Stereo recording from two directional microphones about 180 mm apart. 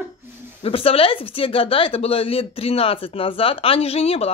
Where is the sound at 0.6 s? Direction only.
30° left (ahead or behind).